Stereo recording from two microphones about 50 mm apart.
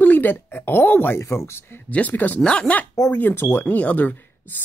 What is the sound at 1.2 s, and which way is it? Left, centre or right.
Speech, left.